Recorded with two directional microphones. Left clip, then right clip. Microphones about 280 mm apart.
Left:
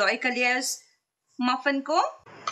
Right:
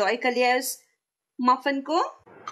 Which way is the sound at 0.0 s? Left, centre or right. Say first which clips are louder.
Right 1 dB; centre.